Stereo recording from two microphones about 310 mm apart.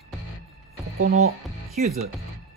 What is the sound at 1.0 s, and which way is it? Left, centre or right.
Speech, right.